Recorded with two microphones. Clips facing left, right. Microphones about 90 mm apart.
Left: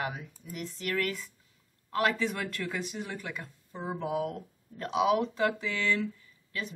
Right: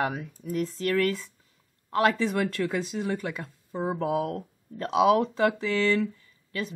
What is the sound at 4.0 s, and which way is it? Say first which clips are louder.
Speech: right 3 dB; 60° right (ahead or behind).